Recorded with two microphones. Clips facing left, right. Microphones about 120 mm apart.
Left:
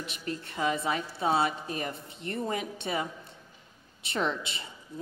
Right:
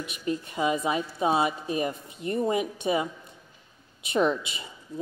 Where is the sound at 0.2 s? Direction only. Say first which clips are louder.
Right 4 dB; 15° right (ahead or behind).